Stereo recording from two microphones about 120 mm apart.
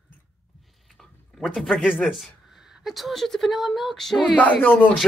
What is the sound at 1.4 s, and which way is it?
Speech, centre (ahead or behind).